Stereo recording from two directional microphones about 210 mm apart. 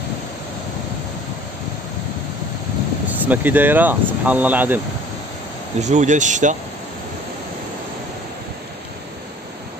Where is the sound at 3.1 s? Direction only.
10° right (ahead or behind).